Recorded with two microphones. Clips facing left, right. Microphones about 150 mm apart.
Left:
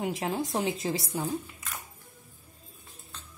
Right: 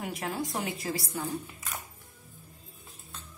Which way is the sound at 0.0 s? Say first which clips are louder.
Left 4 dB; 25° left (ahead or behind).